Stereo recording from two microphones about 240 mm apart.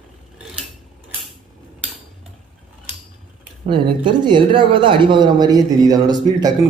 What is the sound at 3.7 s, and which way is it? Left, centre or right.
Speech, centre.